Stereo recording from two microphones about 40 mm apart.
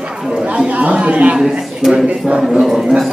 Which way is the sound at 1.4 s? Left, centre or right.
Centre.